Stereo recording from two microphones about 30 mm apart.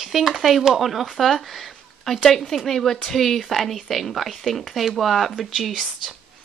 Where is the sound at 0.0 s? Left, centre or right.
Centre.